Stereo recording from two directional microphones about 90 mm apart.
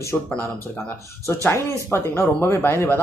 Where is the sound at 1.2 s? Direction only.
30° left (ahead or behind).